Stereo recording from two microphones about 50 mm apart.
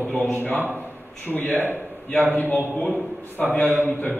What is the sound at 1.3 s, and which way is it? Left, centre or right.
Speech, centre.